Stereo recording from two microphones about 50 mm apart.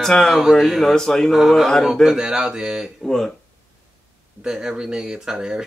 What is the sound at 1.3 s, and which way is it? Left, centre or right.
Speech, centre.